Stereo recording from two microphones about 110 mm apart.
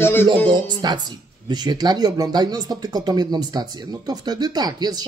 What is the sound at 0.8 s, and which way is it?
Speech, 40° right (ahead or behind).